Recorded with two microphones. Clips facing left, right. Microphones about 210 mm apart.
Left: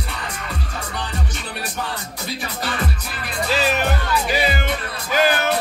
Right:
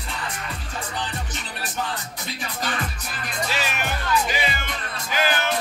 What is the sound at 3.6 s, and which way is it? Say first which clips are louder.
Music: left 7 dB; 35° left (ahead or behind).